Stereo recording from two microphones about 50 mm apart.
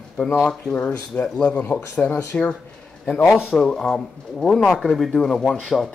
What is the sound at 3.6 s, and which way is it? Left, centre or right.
Speech, centre.